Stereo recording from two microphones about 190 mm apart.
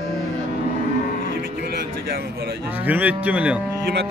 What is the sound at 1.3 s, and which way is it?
Music, 55° right (ahead or behind).